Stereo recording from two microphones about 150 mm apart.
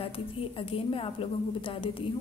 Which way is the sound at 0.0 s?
35° left (ahead or behind).